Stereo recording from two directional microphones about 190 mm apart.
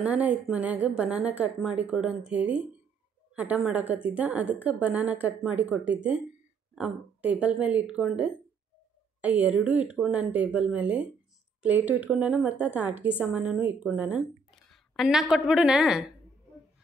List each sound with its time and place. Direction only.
0.0 s a woman's voice: 5° right (ahead or behind)